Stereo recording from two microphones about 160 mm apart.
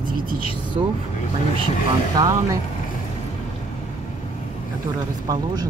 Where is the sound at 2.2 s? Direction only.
20° right (ahead or behind).